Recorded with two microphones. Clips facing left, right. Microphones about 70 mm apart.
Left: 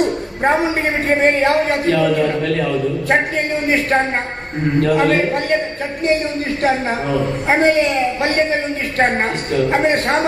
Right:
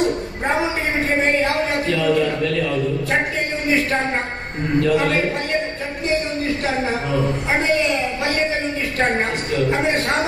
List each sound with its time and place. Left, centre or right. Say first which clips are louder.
0.4 s a man's voice: left 6 dB; left
7.2 s a man's voice: left 5 dB; left
9.5 s a man's voice: left 4 dB; left